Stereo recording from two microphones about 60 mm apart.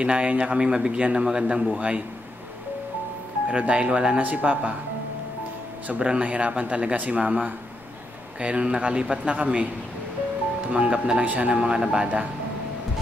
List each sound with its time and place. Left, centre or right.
0.0 s speech: right
3.4 s speech: centre
5.9 s speech: centre
10.7 s speech: centre